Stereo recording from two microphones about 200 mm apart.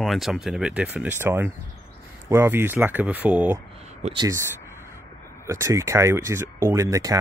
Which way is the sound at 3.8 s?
30° right (ahead or behind).